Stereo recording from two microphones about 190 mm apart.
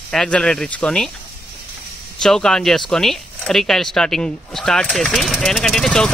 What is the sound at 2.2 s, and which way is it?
Speech, 5° left (ahead or behind).